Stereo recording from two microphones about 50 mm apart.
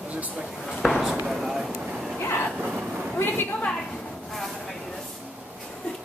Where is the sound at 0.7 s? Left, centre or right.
Centre.